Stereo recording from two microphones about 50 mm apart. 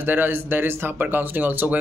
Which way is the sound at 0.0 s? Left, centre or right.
Right.